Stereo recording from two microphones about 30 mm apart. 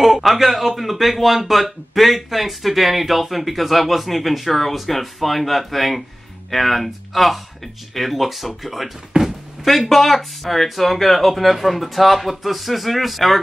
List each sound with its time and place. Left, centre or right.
0.0 s speech: centre
9.1 s speech: right
9.7 s speech: centre